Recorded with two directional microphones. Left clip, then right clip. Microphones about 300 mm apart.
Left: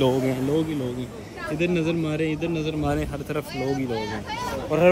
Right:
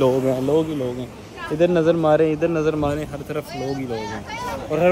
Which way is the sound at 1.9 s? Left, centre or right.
Centre.